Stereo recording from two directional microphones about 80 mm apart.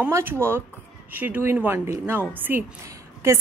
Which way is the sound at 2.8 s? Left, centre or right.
Right.